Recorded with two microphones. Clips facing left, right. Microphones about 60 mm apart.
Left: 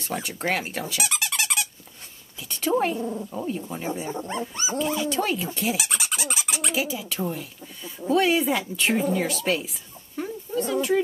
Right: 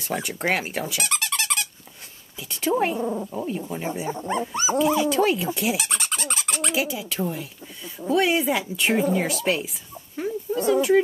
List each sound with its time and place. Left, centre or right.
0.0 s speech: centre
0.9 s squeak: centre
2.5 s cat: centre
3.0 s speech: right
3.3 s speech: centre
4.3 s speech: centre
5.8 s a sound: centre
7.0 s speech: centre
10.1 s dog: centre